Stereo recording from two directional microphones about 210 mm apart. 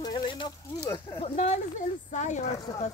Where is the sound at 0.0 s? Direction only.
20° left (ahead or behind).